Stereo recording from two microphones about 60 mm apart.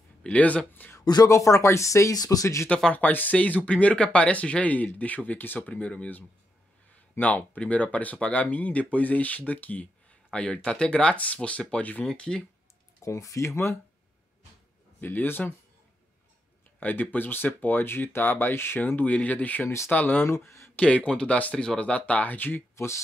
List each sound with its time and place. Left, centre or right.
0.2 s speech: left
0.8 s speech: left
1.3 s speech: left
2.9 s speech: left
12.1 s speech: centre
13.0 s speech: left
15.0 s speech: left
16.8 s speech: left
18.9 s speech: left
20.2 s speech: left
20.7 s speech: left
22.8 s speech: left